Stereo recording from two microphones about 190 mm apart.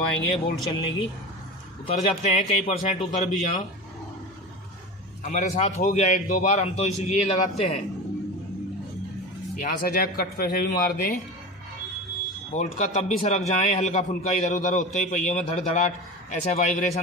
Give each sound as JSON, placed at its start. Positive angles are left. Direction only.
{"t": 0.7, "sound": "a man's voice", "side_deg": 25}
{"t": 5.2, "sound": "a man's voice", "side_deg": 40}
{"t": 9.6, "sound": "speech", "side_deg": 50}
{"t": 12.5, "sound": "a man's voice", "side_deg": 35}